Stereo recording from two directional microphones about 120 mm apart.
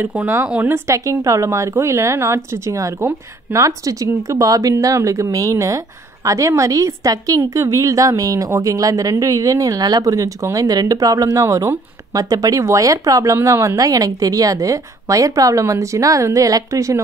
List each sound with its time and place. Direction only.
0.0 s a woman's voice: 15° right (ahead or behind)